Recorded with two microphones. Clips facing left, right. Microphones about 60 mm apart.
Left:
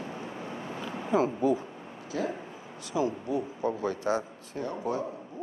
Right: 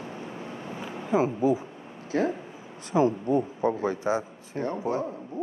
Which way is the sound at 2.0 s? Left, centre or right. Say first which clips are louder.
Right 6 dB; right.